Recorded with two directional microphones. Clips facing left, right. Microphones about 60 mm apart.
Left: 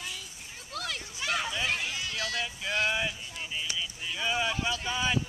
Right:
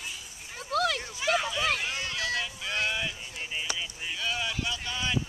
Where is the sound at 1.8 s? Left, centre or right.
Right.